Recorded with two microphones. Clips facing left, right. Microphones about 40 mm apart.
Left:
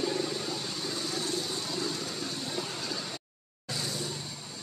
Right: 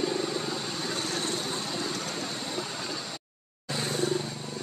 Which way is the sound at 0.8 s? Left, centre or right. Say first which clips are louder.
Right 3 dB; right.